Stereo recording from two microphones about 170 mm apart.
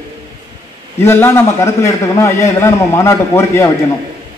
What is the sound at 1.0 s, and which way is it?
A man's voice, 15° left (ahead or behind).